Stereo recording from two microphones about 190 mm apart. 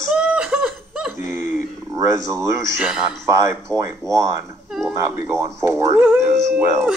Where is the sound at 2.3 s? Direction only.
15° right (ahead or behind).